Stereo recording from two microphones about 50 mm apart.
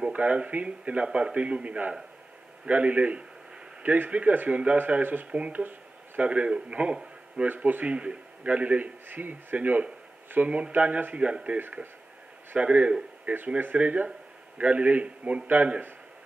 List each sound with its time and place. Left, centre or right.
0.0 s a man's voice: right
5.3 s a man's voice: right
5.6 s a sound: right
6.2 s a man's voice: right
7.4 s a man's voice: right
9.1 s speech: right
11.1 s a man's voice: right